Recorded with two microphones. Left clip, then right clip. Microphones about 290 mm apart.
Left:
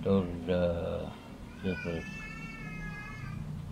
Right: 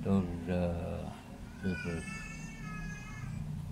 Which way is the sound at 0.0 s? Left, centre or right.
Centre.